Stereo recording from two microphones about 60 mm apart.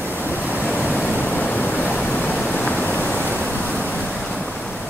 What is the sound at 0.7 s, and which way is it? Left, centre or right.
Pink noise, left.